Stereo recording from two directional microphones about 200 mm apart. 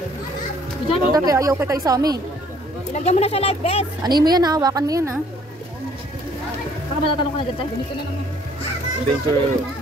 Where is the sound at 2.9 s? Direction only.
35° left (ahead or behind).